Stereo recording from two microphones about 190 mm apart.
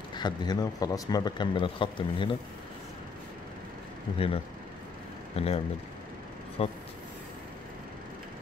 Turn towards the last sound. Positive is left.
turn(degrees=30)  # may be behind; listen again after turning